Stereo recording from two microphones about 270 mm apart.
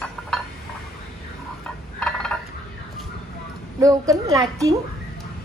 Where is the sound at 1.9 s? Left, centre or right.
Centre.